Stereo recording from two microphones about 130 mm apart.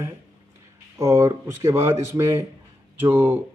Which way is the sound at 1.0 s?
25° right (ahead or behind).